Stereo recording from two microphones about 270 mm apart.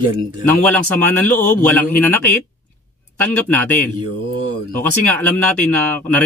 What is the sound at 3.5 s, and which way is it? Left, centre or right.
Speech, centre.